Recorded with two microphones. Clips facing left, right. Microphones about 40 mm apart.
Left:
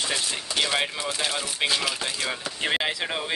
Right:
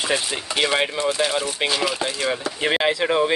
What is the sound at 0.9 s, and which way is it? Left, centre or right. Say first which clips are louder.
Speech: right 7 dB; centre.